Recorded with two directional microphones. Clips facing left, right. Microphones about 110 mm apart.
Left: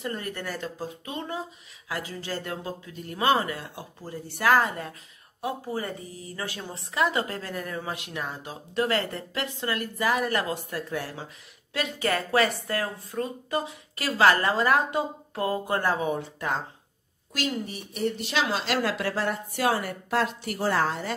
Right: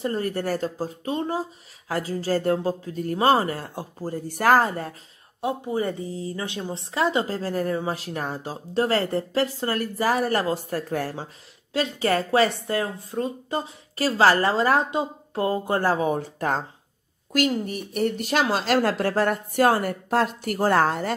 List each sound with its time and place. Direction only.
0.0 s speech: 35° right (ahead or behind)
5.4 s speech: 25° right (ahead or behind); by 11.2 s 45° right (ahead or behind)
11.7 s speech: 30° right (ahead or behind); by 21.1 s 55° right (ahead or behind)